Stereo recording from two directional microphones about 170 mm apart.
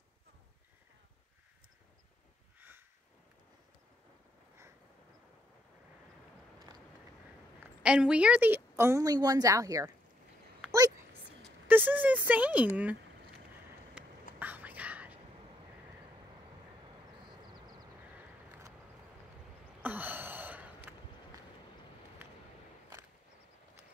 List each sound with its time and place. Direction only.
7.6 s a woman's voice: 5° right (ahead or behind)
11.6 s speech: 10° right (ahead or behind)
14.4 s whispering: 10° right (ahead or behind)
19.8 s gasp: 10° right (ahead or behind)